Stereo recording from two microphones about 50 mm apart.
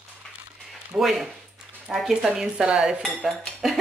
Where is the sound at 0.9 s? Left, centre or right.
Centre.